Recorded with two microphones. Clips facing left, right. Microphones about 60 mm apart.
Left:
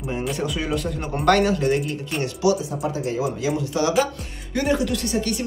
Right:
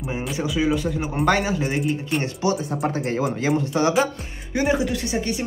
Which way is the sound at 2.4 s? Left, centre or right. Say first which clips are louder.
Left 4 dB; right.